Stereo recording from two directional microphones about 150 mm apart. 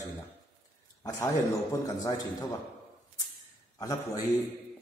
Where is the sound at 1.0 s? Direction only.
20° left (ahead or behind).